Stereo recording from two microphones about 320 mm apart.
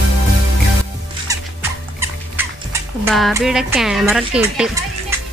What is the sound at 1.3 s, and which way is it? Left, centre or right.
Music, centre.